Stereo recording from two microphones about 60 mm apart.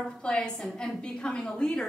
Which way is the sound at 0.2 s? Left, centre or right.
Centre.